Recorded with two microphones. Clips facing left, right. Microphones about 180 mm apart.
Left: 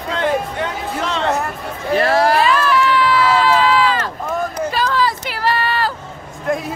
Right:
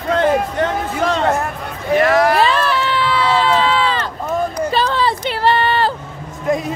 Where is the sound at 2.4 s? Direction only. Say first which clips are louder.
Left 1 dB; 30° right (ahead or behind).